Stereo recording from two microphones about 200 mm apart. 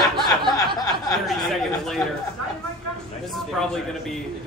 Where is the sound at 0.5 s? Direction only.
15° left (ahead or behind).